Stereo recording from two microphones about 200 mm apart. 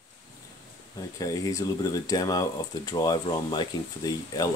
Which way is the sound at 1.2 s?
15° left (ahead or behind).